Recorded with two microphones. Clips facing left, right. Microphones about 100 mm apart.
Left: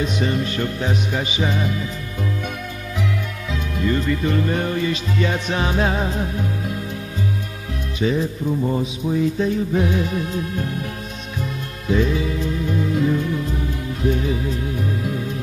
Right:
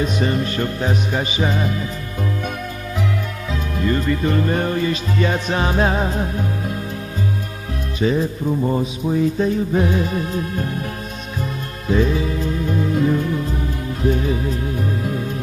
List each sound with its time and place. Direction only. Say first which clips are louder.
0.0 s music: right 2 dB; 40° right (ahead or behind)
3.8 s music: right 1 dB; 45° right (ahead or behind)
8.0 s music: right 2 dB; 40° right (ahead or behind)
11.9 s music: right 1 dB; 40° right (ahead or behind)